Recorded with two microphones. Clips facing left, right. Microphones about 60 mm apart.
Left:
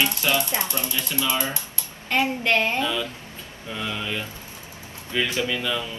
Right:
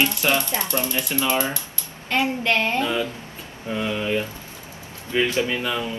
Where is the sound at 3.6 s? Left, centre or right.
Right.